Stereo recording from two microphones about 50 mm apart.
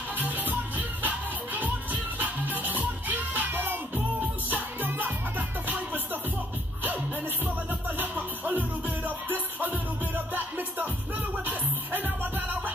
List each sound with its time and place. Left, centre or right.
0.2 s music: right
8.0 s music: right
11.4 s music: right